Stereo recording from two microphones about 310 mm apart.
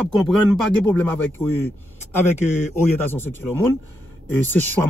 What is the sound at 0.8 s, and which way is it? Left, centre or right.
Speech, centre.